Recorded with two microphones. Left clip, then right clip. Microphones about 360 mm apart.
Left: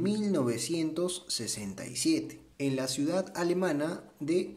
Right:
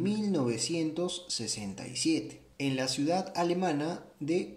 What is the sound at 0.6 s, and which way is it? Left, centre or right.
Speech, left.